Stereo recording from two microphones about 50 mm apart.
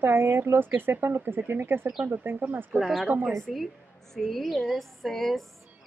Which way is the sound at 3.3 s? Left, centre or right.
Centre.